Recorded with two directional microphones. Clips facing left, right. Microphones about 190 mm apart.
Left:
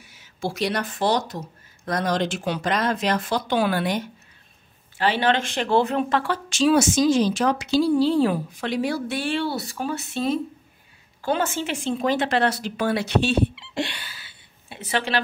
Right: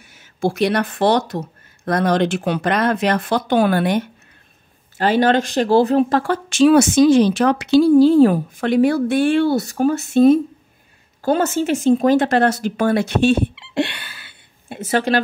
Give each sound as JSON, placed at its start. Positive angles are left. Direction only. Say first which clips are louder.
{"t": 0.0, "sound": "speech", "louder": "right 8 dB", "side_deg": -50}
{"t": 4.9, "sound": "speech", "louder": "right 6 dB", "side_deg": -45}